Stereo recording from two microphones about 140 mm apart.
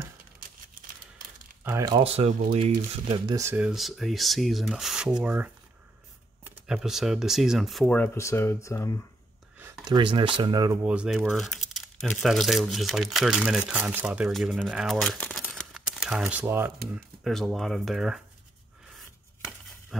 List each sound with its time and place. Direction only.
1.6 s speech: 15° right (ahead or behind)
2.0 s speech: 50° right (ahead or behind)
3.5 s speech: 5° right (ahead or behind)
8.0 s speech: 20° left (ahead or behind)
9.8 s speech: 35° right (ahead or behind)
10.8 s speech: 10° right (ahead or behind)
16.9 s speech: centre (ahead or behind)
19.9 s a sound: centre (ahead or behind)